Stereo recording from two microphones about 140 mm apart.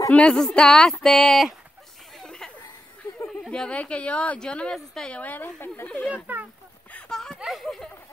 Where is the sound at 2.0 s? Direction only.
5° left (ahead or behind).